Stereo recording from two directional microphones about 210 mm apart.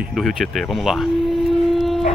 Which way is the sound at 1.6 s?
Centre (ahead or behind).